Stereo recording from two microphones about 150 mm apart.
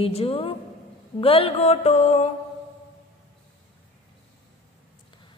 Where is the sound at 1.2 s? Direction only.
40° left (ahead or behind).